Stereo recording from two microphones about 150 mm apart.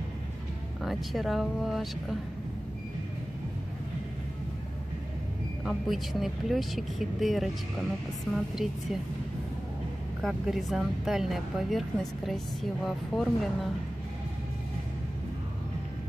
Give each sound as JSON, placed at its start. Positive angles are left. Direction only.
{"t": 0.8, "sound": "speech", "side_deg": 0}
{"t": 5.7, "sound": "speech", "side_deg": 0}
{"t": 10.2, "sound": "speech", "side_deg": 0}